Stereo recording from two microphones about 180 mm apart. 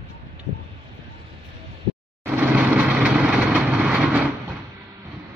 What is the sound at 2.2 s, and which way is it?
Vehicle, 10° right (ahead or behind).